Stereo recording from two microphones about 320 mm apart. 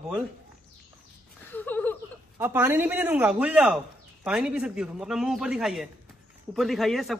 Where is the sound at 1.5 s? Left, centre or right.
Centre.